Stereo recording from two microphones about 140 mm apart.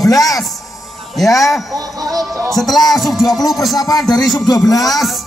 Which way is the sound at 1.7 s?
25° right (ahead or behind).